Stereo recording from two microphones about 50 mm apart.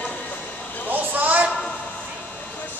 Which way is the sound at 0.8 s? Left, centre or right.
Right.